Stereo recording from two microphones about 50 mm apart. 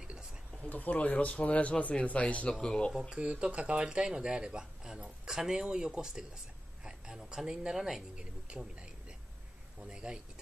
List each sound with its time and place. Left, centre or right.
0.7 s speech: left
2.5 s speech: centre
2.9 s speech: centre
3.2 s speech: right
8.2 s speech: centre
9.8 s speech: centre